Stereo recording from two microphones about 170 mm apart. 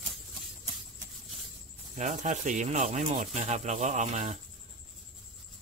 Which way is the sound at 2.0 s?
45° right (ahead or behind).